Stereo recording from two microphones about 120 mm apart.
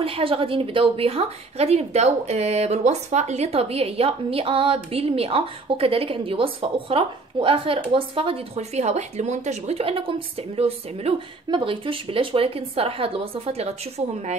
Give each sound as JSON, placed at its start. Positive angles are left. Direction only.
{"t": 0.0, "sound": "a woman's voice", "side_deg": -50}
{"t": 11.5, "sound": "a woman's voice", "side_deg": -45}